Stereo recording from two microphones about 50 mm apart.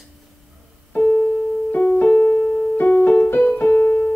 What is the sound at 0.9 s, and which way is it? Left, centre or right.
Keyboard, left.